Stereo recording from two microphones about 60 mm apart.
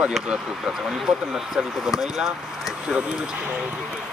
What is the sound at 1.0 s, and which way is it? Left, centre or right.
Speech, centre.